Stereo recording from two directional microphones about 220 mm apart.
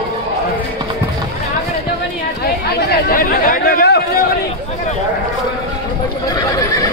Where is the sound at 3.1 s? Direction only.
40° left (ahead or behind).